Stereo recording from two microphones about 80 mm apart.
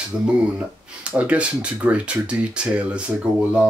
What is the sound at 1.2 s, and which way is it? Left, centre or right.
Speech, centre.